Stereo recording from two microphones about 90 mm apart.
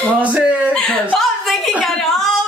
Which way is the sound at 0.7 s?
10° left (ahead or behind).